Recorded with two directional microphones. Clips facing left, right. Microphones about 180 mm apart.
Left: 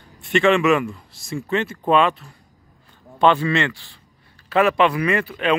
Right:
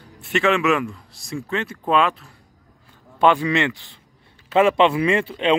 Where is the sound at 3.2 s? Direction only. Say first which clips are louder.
Even; 10° right (ahead or behind).